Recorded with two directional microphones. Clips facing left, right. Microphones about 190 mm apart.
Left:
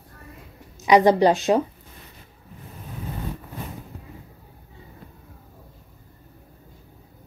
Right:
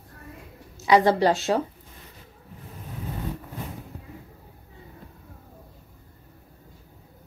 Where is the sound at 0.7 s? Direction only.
15° left (ahead or behind).